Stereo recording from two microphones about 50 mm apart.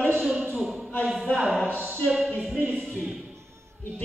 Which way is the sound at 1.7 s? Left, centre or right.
Right.